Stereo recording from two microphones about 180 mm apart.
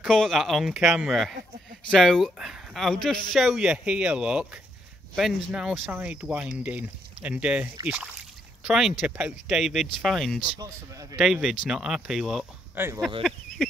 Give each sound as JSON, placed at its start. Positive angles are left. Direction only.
{"t": 0.0, "sound": "speech", "side_deg": 0}
{"t": 10.6, "sound": "speech", "side_deg": -20}
{"t": 11.1, "sound": "speech", "side_deg": 0}
{"t": 12.7, "sound": "speech", "side_deg": -10}